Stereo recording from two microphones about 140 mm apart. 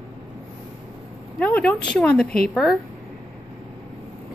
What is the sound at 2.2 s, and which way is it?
Speech, 90° left.